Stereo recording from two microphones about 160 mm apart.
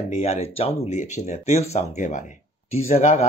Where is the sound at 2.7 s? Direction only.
40° left (ahead or behind).